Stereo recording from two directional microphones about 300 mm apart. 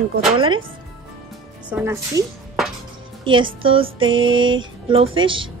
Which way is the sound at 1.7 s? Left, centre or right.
Centre.